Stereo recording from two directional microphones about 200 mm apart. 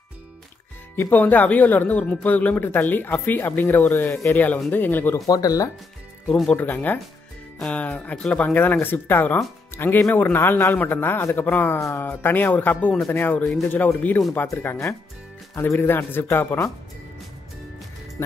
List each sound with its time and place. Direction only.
0.9 s speech: 10° left (ahead or behind)
6.2 s speech: 5° left (ahead or behind)